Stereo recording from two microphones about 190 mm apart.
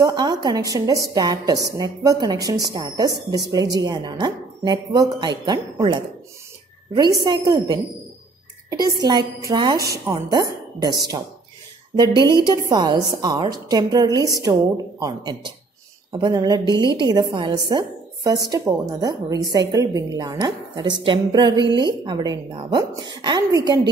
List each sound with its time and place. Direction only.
0.0 s a woman's voice: 20° right (ahead or behind)
12.4 s a woman's voice: 20° right (ahead or behind)